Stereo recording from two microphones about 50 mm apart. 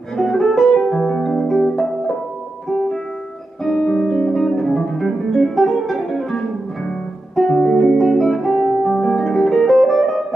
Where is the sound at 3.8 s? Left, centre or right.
Centre.